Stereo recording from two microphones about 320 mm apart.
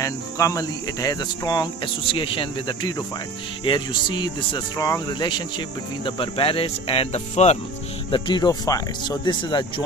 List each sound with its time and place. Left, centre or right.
0.0 s speech: centre